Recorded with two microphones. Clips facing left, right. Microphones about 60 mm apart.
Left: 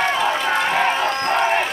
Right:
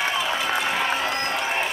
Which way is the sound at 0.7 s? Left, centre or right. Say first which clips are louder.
Left 5 dB; left.